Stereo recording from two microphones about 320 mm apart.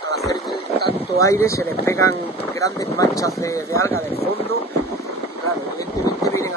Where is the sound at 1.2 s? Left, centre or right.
Centre.